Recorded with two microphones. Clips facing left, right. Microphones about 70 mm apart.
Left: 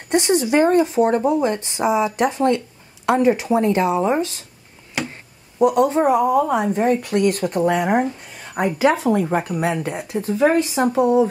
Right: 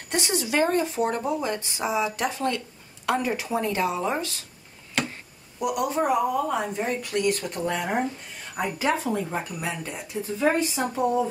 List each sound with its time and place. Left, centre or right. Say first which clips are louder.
0.1 s speech: left 9 dB; left
5.6 s speech: left 9 dB; left
6.7 s speech: left 9 dB; left
8.5 s speech: left 8 dB; left